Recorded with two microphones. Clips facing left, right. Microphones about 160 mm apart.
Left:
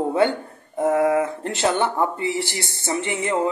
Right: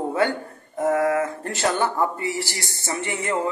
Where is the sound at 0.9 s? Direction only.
20° left (ahead or behind).